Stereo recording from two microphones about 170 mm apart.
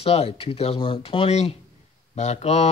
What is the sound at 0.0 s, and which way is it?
Speech, 35° left (ahead or behind).